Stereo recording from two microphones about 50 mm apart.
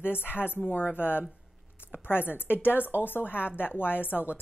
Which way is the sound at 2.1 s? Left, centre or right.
Left.